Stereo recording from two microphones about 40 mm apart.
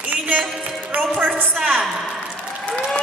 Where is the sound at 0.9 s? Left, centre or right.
Right.